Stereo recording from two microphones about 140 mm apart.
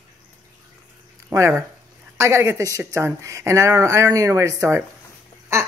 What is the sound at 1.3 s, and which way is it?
Speech, 20° right (ahead or behind).